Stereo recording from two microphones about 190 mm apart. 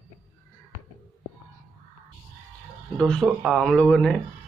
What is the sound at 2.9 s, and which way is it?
Speech, 5° left (ahead or behind).